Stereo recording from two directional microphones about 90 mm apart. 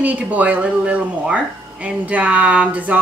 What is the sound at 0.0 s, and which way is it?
Speech, 15° right (ahead or behind).